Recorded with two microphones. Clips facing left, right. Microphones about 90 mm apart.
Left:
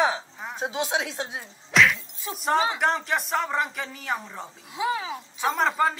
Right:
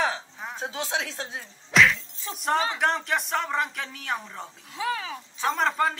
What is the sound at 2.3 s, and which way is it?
Speech, centre (ahead or behind).